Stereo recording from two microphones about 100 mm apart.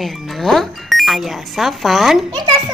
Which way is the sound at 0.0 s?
Centre (ahead or behind).